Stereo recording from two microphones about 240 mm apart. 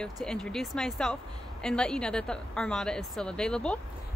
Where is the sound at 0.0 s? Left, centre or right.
Centre.